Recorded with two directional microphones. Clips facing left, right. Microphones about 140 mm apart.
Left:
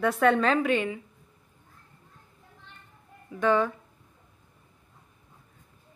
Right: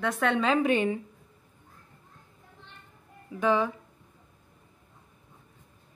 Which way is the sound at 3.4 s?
10° right (ahead or behind).